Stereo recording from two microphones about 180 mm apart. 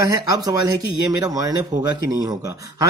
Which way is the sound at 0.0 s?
20° right (ahead or behind).